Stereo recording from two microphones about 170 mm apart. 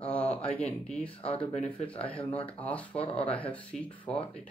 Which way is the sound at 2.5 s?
10° left (ahead or behind).